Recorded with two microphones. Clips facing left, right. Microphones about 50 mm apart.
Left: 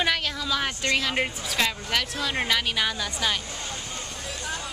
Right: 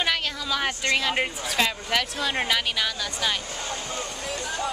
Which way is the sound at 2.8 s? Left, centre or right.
Centre.